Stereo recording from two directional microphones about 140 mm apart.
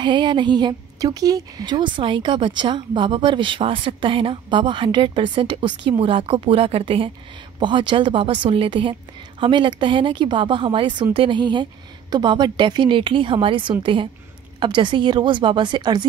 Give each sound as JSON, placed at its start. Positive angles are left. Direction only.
{"t": 0.0, "sound": "a woman's voice", "side_deg": -35}